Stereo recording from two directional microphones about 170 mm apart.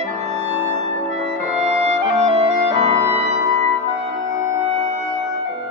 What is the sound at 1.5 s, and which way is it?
Clarinet, 40° right (ahead or behind).